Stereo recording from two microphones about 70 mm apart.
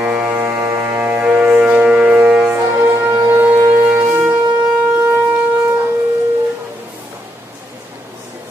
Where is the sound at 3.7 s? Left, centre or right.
Right.